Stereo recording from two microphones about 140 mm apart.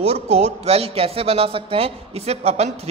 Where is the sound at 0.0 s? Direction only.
45° right (ahead or behind).